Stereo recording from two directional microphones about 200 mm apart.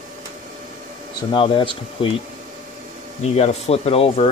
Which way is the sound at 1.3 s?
25° left (ahead or behind).